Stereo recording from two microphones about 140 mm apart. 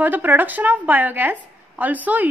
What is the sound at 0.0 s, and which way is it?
A woman's voice, 10° right (ahead or behind).